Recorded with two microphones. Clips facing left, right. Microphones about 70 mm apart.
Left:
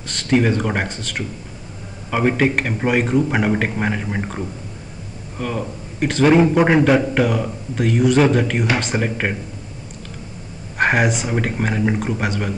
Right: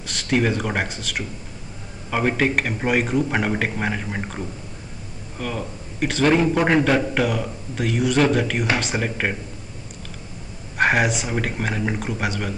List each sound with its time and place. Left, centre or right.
0.0 s a man's voice: centre
10.8 s speech: centre